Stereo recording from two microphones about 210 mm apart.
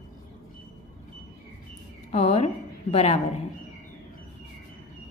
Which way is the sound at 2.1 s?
30° left (ahead or behind).